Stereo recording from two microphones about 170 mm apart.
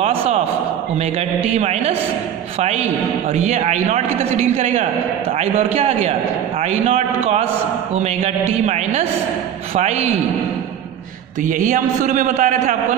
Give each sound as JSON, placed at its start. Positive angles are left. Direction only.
{"t": 0.0, "sound": "a sound", "side_deg": -35}
{"t": 1.4, "sound": "a man's voice", "side_deg": -40}
{"t": 11.4, "sound": "a man's voice", "side_deg": -50}